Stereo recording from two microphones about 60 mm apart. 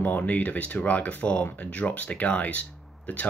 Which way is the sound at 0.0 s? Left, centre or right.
Left.